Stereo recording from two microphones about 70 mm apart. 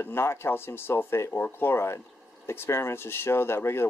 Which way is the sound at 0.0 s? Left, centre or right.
Left.